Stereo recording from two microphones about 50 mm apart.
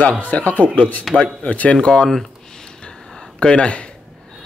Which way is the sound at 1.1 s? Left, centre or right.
Centre.